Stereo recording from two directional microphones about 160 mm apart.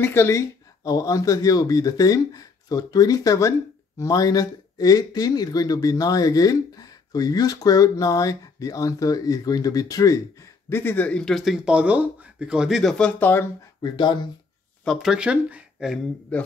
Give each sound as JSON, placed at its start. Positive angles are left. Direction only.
{"t": 0.0, "sound": "speech", "side_deg": 15}
{"t": 13.9, "sound": "speech", "side_deg": 30}
{"t": 14.9, "sound": "speech", "side_deg": 0}
{"t": 16.3, "sound": "a man's voice", "side_deg": 10}